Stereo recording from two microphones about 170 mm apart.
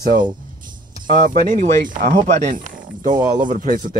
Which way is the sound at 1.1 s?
55° right (ahead or behind).